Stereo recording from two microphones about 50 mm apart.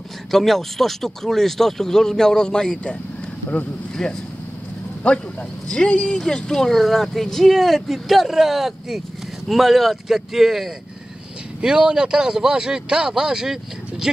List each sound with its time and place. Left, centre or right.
0.3 s speech: centre
4.0 s speech: centre
5.1 s speech: left; by 10.7 s centre
11.6 s speech: centre